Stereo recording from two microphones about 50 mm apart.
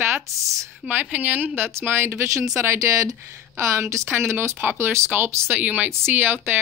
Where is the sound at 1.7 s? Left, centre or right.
Right.